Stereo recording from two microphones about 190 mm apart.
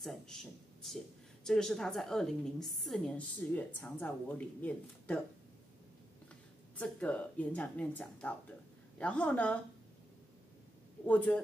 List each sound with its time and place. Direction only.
0.0 s a woman's voice: centre (ahead or behind)
6.8 s a woman's voice: 5° left (ahead or behind)
11.1 s a woman's voice: 10° left (ahead or behind)